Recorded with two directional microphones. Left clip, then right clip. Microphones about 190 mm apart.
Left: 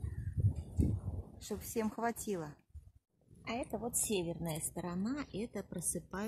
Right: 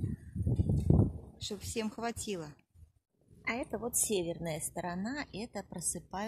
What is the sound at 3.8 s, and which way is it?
Speech, 55° right (ahead or behind).